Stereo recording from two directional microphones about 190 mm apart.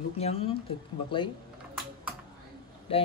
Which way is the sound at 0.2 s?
35° left (ahead or behind).